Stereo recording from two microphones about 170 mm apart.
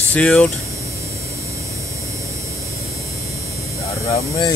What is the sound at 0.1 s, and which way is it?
Speech, 5° left (ahead or behind).